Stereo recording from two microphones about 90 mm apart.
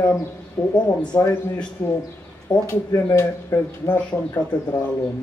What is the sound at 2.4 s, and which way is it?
Speech, 35° left (ahead or behind).